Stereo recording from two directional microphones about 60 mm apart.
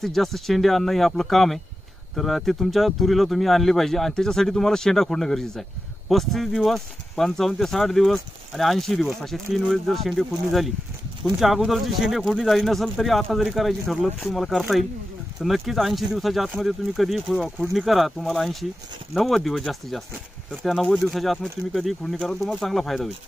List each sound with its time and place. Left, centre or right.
0.0 s speech: centre
22.1 s speech: centre
22.4 s speech: centre